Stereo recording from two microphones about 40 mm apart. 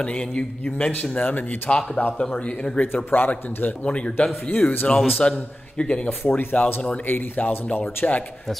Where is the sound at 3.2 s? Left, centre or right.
Left.